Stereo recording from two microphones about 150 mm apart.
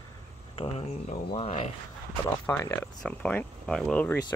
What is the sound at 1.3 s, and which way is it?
Speech, 40° left (ahead or behind).